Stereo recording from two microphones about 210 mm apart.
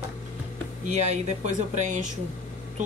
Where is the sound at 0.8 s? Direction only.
35° right (ahead or behind).